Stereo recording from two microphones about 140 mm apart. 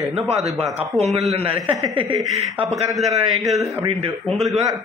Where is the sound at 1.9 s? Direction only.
40° right (ahead or behind).